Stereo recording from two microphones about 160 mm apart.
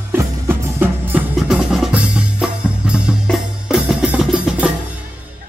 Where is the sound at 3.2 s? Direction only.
Centre (ahead or behind).